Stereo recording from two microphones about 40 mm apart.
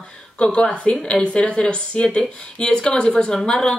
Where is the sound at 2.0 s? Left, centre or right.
Centre.